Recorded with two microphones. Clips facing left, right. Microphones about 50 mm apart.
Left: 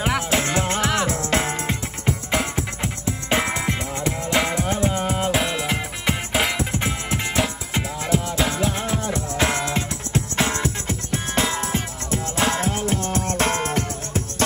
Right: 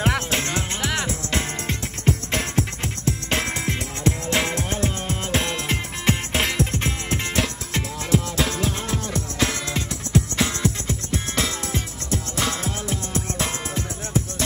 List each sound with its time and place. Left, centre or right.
0.3 s music: left
2.3 s music: centre
9.1 s music: left